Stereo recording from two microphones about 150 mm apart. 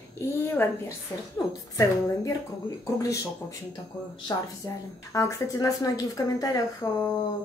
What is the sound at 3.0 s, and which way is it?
Speech, 25° left (ahead or behind).